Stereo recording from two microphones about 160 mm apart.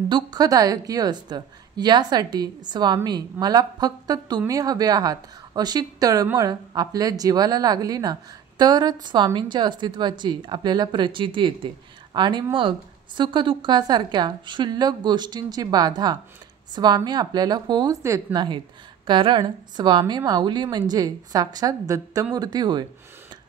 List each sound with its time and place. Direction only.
0.1 s a woman's voice: 25° right (ahead or behind)